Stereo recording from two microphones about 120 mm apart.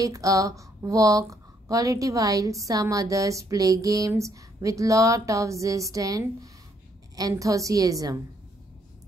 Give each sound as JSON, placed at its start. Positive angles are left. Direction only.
{"t": 0.0, "sound": "a woman's voice", "side_deg": -30}